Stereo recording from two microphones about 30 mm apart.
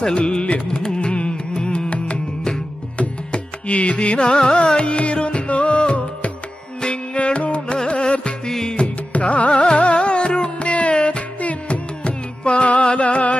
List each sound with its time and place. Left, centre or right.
0.0 s carnatic music: left
3.0 s music: left
4.3 s carnatic music: left
4.7 s music: left
8.5 s music: centre
8.7 s music: left
10.6 s music: left